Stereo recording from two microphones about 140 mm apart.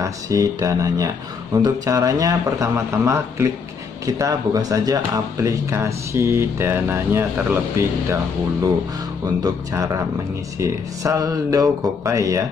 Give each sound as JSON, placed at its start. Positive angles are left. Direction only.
{"t": 0.0, "sound": "speech", "side_deg": -25}
{"t": 9.4, "sound": "speech", "side_deg": -25}